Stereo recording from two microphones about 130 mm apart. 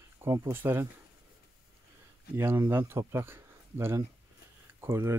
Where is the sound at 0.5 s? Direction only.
15° right (ahead or behind).